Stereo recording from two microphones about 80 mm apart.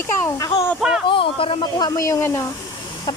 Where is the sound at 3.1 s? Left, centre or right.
Left.